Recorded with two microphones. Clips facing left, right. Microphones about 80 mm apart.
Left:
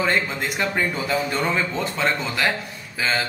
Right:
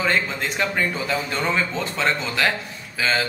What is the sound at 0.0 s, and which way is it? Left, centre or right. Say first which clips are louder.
A man's voice: even; centre.